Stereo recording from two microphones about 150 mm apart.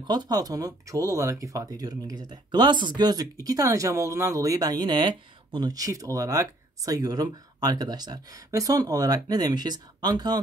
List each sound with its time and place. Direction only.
0.0 s speech: 30° right (ahead or behind)